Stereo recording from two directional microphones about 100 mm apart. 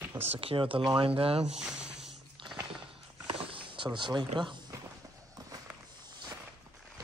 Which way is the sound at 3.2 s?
60° right (ahead or behind).